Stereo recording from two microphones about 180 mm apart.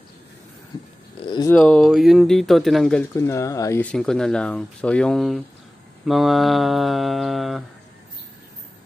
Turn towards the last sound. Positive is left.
turn(degrees=0)  # may be behind; listen again after turning